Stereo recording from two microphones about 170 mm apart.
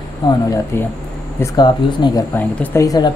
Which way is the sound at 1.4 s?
25° left (ahead or behind).